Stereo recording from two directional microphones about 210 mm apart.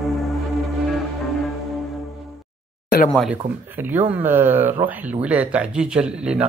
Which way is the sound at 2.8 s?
45° left (ahead or behind).